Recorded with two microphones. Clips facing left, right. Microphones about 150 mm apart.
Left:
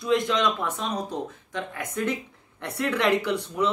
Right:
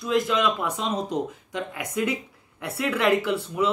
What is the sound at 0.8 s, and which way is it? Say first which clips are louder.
Speech: right 3 dB; 20° right (ahead or behind).